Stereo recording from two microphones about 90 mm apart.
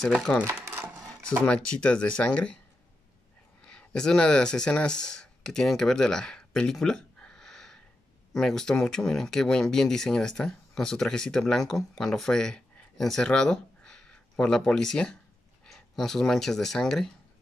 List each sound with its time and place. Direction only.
0.4 s a sound: 30° right (ahead or behind)
1.4 s speech: 10° left (ahead or behind)
3.6 s speech: 10° left (ahead or behind)